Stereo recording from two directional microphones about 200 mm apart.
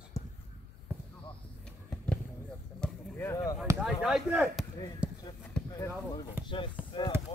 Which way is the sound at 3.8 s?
Centre (ahead or behind).